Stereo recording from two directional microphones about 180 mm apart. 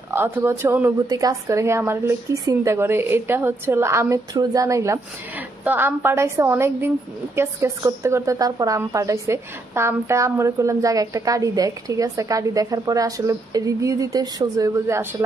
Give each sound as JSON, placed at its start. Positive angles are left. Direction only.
{"t": 0.1, "sound": "a woman's voice", "side_deg": -15}